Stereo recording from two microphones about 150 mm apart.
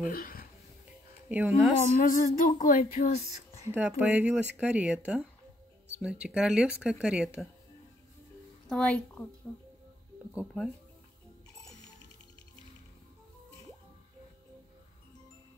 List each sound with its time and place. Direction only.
0.1 s speech: 75° left (ahead or behind)
1.3 s speech: 10° right (ahead or behind)
2.0 s a sound: 60° left (ahead or behind)
3.6 s speech: 10° right (ahead or behind)
8.6 s speech: 5° left (ahead or behind)
10.3 s speech: centre (ahead or behind)